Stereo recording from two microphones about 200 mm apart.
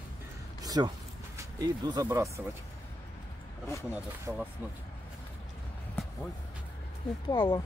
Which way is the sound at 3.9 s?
10° right (ahead or behind).